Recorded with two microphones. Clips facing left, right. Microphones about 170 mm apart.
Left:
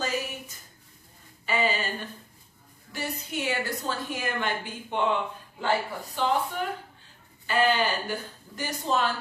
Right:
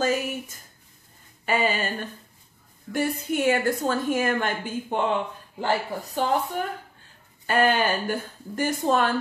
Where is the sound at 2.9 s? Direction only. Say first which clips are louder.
Right 8 dB; 50° right (ahead or behind).